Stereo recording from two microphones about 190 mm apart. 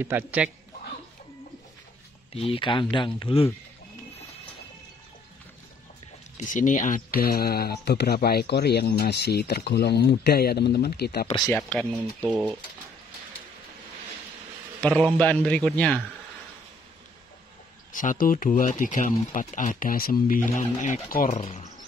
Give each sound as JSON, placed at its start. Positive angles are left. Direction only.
{"t": 0.0, "sound": "speech", "side_deg": -10}
{"t": 2.3, "sound": "speech", "side_deg": 30}
{"t": 6.3, "sound": "speech", "side_deg": 45}
{"t": 11.3, "sound": "speech", "side_deg": 15}
{"t": 11.8, "sound": "speech", "side_deg": -10}
{"t": 14.8, "sound": "a man's voice", "side_deg": 5}
{"t": 17.9, "sound": "speech", "side_deg": 45}
{"t": 21.4, "sound": "speech", "side_deg": 30}